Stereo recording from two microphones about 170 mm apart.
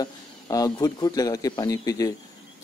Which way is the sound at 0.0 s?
20° left (ahead or behind).